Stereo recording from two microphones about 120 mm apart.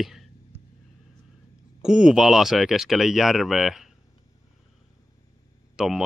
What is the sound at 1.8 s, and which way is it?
Speech, 5° right (ahead or behind).